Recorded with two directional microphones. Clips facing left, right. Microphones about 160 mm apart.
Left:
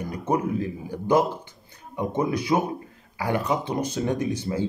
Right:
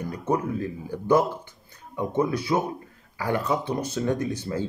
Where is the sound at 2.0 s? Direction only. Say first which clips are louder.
Even; 15° left (ahead or behind).